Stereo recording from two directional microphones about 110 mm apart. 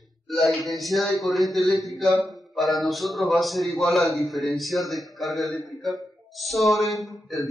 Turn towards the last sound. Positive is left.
turn(degrees=30)  # may be behind; listen again after turning